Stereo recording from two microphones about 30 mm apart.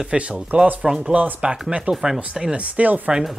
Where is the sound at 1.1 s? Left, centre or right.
Right.